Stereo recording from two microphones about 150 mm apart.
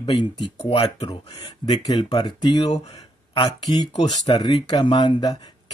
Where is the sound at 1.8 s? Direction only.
30° left (ahead or behind).